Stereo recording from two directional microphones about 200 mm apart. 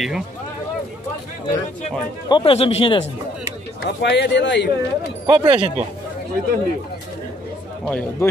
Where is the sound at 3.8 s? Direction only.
60° left (ahead or behind).